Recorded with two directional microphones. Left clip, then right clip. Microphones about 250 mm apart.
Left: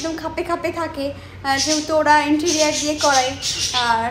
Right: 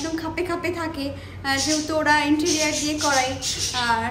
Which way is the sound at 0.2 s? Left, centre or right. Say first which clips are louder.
Left 3 dB; centre.